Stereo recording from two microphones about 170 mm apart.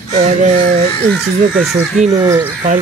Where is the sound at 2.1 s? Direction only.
20° right (ahead or behind).